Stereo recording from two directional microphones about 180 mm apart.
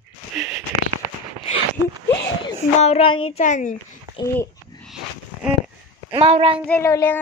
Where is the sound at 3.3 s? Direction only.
45° left (ahead or behind).